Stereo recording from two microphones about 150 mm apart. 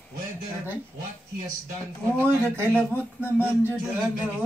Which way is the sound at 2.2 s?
15° right (ahead or behind).